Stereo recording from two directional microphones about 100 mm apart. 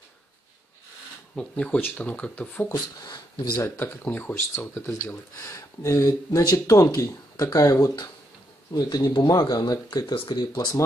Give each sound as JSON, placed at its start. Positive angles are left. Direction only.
{"t": 1.3, "sound": "speech", "side_deg": 10}
{"t": 2.7, "sound": "speech", "side_deg": 40}
{"t": 3.6, "sound": "speech", "side_deg": 25}
{"t": 4.9, "sound": "speech", "side_deg": 30}
{"t": 8.7, "sound": "speech", "side_deg": 50}